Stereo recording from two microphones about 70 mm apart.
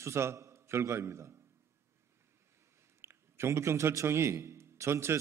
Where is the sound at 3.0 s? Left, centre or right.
Right.